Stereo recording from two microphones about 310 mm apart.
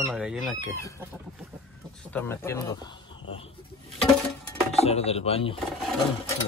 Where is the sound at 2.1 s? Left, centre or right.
Centre.